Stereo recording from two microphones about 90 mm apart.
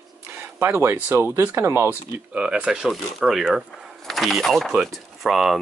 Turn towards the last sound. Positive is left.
turn(degrees=0)  # may be behind; listen again after turning